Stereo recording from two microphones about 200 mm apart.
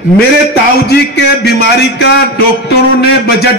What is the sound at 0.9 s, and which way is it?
Speech, 55° left (ahead or behind).